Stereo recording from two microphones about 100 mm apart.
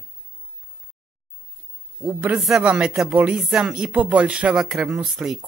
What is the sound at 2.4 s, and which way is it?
Speech, 5° right (ahead or behind).